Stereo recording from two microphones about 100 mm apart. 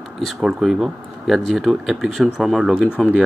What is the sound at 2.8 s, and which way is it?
Speech, 15° left (ahead or behind).